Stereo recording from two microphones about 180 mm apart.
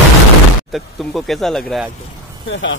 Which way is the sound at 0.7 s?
Centre (ahead or behind).